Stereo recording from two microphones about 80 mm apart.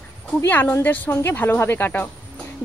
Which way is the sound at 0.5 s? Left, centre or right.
Left.